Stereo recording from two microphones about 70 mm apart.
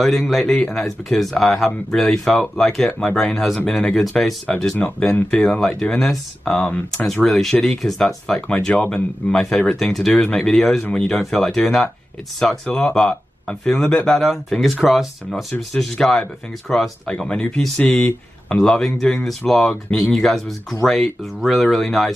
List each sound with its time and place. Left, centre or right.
0.3 s speech: centre
3.7 s speech: centre
4.0 s speech: centre
5.8 s speech: centre
17.1 s speech: centre